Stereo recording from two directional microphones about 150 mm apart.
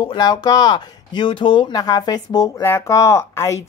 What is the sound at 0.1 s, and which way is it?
A woman's voice, 25° left (ahead or behind).